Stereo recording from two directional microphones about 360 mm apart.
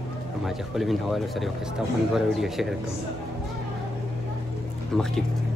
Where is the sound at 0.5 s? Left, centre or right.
Centre.